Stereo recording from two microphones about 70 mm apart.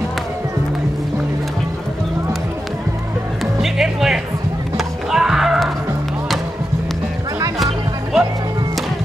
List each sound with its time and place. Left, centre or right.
3.6 s music: centre
7.5 s music: centre